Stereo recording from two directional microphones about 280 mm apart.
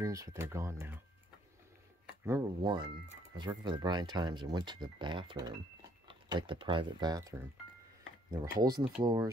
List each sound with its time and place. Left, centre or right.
0.0 s speech: centre
2.2 s speech: centre